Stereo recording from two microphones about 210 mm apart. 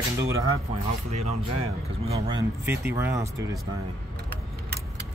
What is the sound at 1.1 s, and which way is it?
Speech, 30° right (ahead or behind).